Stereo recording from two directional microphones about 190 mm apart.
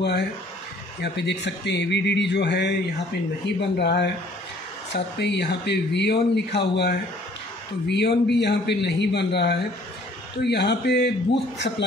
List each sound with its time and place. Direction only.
1.0 s speech: 65° left (ahead or behind)